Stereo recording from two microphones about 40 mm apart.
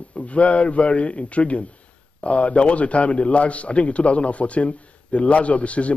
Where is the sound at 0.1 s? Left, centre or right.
Left.